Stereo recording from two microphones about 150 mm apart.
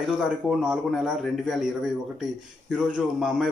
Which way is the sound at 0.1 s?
5° right (ahead or behind).